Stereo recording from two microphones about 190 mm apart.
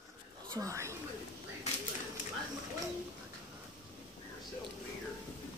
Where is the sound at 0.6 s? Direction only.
15° right (ahead or behind).